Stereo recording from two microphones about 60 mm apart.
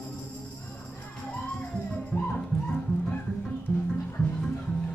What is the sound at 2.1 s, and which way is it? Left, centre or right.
Music, left.